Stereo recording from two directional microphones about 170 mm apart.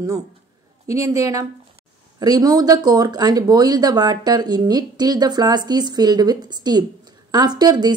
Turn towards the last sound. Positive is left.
turn(degrees=-25)  # may be behind; listen again after turning